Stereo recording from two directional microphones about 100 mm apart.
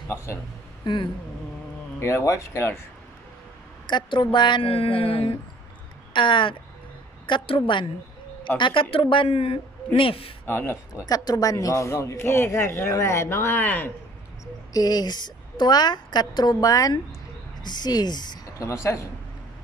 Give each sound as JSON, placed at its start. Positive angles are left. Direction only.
{"t": 0.8, "sound": "speech", "side_deg": 50}
{"t": 2.0, "sound": "a man's voice", "side_deg": 30}
{"t": 3.9, "sound": "speech", "side_deg": 55}
{"t": 6.1, "sound": "speech", "side_deg": 60}
{"t": 10.4, "sound": "a man's voice", "side_deg": 20}
{"t": 11.1, "sound": "a man's voice", "side_deg": 40}
{"t": 14.4, "sound": "a woman's voice", "side_deg": 40}
{"t": 18.6, "sound": "a man's voice", "side_deg": 30}